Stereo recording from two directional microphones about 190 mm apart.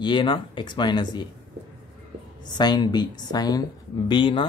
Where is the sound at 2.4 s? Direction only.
20° left (ahead or behind).